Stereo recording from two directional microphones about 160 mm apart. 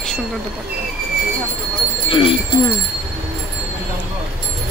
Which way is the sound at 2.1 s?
30° left (ahead or behind).